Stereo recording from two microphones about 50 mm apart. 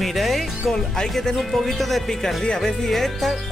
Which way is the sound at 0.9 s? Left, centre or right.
Centre.